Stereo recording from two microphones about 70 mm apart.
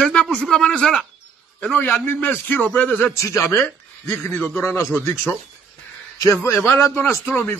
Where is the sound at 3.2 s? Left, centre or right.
Left.